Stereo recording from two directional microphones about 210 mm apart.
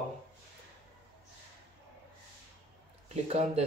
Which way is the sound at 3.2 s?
30° right (ahead or behind).